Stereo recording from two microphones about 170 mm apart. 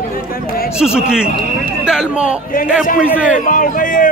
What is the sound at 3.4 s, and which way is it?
Speech, 50° left (ahead or behind).